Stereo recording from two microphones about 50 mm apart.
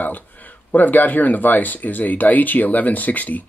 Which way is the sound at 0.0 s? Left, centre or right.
Left.